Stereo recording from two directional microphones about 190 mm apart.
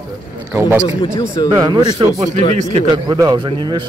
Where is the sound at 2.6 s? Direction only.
40° right (ahead or behind).